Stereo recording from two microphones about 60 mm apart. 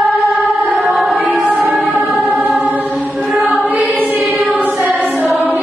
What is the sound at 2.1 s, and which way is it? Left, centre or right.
Choir, centre.